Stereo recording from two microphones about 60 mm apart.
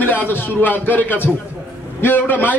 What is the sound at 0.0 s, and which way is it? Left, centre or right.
A man's voice, left.